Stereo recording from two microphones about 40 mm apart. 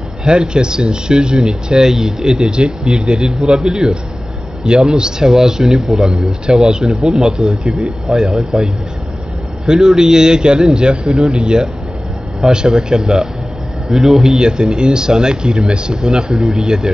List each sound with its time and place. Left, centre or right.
0.2 s speech: right
6.9 s speech: centre
7.2 s speech: centre
9.7 s speech: centre
13.8 s speech: centre
14.3 s speech: right